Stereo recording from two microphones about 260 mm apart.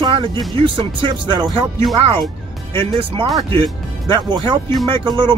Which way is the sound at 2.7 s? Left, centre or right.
Centre.